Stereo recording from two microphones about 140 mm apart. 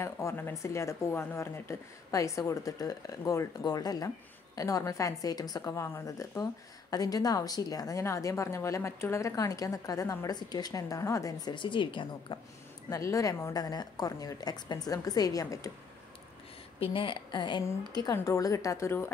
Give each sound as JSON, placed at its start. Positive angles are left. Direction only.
{"t": 0.0, "sound": "a woman's voice", "side_deg": 20}
{"t": 12.9, "sound": "a woman's voice", "side_deg": 25}
{"t": 16.8, "sound": "a woman's voice", "side_deg": 40}